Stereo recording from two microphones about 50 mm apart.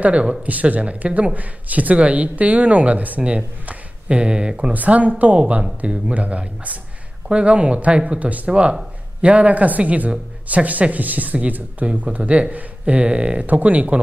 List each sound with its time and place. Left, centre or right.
0.0 s a woman's voice: right
4.7 s a woman's voice: right